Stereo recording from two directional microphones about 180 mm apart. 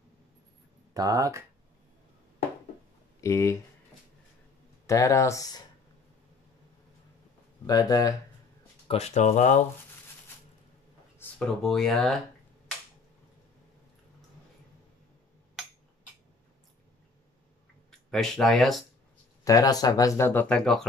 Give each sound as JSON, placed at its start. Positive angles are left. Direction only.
{"t": 0.9, "sound": "speech", "side_deg": -20}
{"t": 3.2, "sound": "speech", "side_deg": 15}
{"t": 4.8, "sound": "speech", "side_deg": 15}
{"t": 7.6, "sound": "speech", "side_deg": 20}
{"t": 8.8, "sound": "speech", "side_deg": 35}
{"t": 11.1, "sound": "speech", "side_deg": 5}
{"t": 18.1, "sound": "speech", "side_deg": 0}
{"t": 19.4, "sound": "speech", "side_deg": 20}